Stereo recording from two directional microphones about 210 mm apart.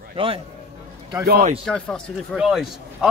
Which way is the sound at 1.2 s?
45° right (ahead or behind).